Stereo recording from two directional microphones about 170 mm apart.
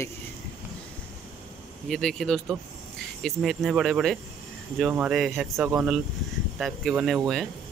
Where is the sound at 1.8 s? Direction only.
Centre (ahead or behind).